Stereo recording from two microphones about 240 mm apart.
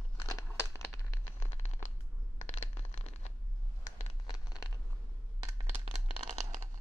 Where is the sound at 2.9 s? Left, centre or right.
Left.